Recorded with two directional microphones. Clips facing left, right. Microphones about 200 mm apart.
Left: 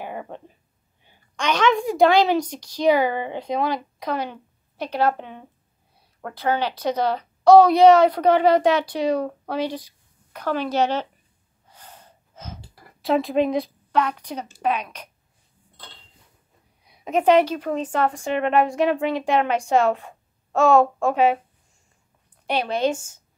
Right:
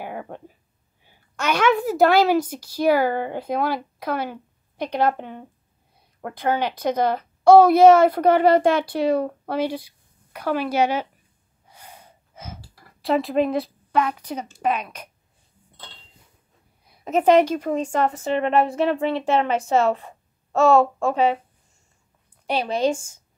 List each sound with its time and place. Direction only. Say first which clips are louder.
0.0 s a sound: even; 5° right (ahead or behind)
1.3 s a woman's voice: even; 5° right (ahead or behind)
11.6 s gasp: right 1 dB; 10° right (ahead or behind)
13.0 s a woman's voice: even; centre (ahead or behind)
17.3 s a woman's voice: right 1 dB; 10° right (ahead or behind)
18.1 s a woman's voice: even; 5° left (ahead or behind)